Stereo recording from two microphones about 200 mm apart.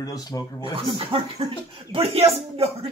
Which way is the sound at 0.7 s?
25° right (ahead or behind).